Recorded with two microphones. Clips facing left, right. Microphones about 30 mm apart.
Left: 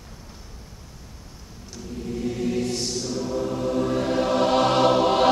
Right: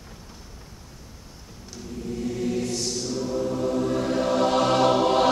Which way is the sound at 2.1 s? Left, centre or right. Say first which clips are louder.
Left 1 dB; centre.